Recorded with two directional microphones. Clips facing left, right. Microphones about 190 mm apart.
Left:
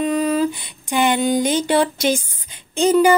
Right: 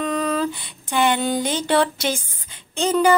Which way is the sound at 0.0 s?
10° left (ahead or behind).